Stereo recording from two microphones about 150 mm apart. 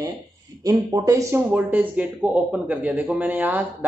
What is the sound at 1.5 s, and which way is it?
Speech, 10° right (ahead or behind).